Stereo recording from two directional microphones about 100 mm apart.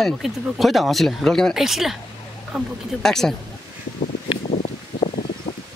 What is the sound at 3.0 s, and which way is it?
Speech, 5° left (ahead or behind).